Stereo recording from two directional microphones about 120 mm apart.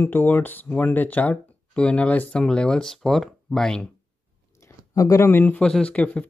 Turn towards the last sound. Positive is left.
turn(degrees=10)  # may be behind; listen again after turning